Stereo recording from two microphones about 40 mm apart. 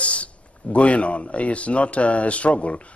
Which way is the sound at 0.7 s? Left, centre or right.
Left.